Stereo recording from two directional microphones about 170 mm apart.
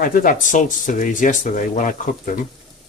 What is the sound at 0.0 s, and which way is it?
Speech, 55° left (ahead or behind).